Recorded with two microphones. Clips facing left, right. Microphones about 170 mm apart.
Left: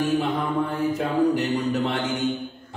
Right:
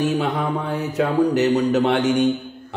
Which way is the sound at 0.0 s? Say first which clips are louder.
Right 2 dB; 75° right (ahead or behind).